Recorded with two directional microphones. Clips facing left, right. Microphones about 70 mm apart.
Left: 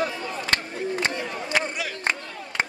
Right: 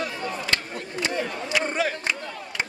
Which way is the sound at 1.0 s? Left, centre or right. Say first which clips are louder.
Even; left.